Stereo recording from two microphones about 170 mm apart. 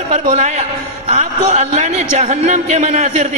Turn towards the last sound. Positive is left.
turn(degrees=-40)  # may be behind; listen again after turning